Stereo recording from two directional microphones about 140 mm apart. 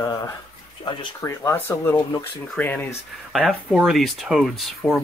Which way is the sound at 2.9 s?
5° right (ahead or behind).